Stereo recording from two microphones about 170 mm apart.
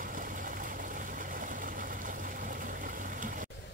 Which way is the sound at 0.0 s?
55° right (ahead or behind).